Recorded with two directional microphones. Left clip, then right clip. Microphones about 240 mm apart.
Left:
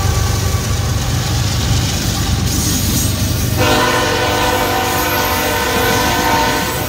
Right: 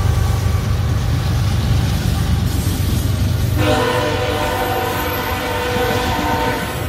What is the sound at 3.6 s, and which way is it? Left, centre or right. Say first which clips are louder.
Train: left 3 dB; left.